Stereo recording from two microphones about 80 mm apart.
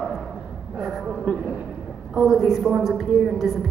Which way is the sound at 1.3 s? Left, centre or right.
Centre.